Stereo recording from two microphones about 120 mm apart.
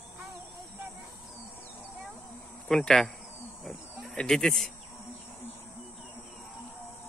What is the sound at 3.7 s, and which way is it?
Wild animals, 5° left (ahead or behind).